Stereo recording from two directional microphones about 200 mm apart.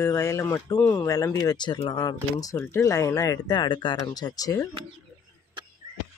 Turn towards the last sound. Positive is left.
turn(degrees=20)  # may be behind; listen again after turning